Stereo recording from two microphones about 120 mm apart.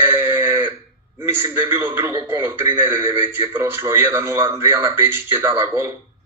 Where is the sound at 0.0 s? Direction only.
20° right (ahead or behind).